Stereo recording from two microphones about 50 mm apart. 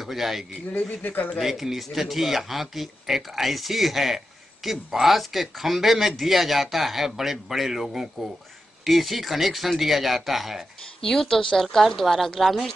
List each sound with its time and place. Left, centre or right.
0.0 s speech: centre
0.7 s speech: left
1.4 s speech: centre
11.1 s speech: centre